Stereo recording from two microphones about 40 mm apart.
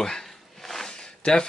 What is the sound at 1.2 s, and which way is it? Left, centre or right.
Speech, left.